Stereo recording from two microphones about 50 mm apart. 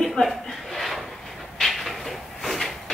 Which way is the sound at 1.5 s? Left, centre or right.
Centre.